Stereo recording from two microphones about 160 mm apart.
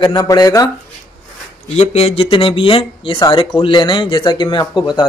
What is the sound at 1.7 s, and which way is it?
Speech, 40° left (ahead or behind).